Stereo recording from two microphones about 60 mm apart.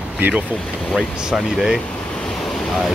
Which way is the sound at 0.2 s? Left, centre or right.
Right.